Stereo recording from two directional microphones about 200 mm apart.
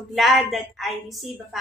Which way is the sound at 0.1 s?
Centre (ahead or behind).